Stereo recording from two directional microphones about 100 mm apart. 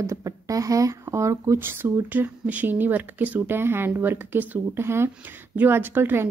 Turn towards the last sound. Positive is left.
turn(degrees=-20)  # may be behind; listen again after turning